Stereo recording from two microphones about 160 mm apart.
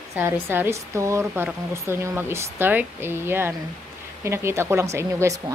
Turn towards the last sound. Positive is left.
turn(degrees=-20)  # may be behind; listen again after turning